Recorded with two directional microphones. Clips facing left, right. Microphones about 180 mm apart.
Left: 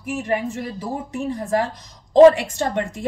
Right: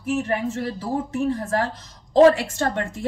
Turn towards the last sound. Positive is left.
turn(degrees=15)  # may be behind; listen again after turning